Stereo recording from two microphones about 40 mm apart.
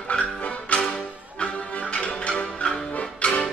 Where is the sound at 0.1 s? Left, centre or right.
Left.